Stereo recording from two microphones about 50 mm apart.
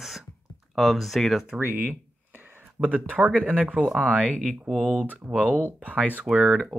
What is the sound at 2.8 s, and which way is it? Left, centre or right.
Speech, right.